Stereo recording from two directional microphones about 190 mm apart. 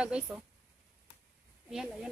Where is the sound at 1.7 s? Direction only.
Centre (ahead or behind).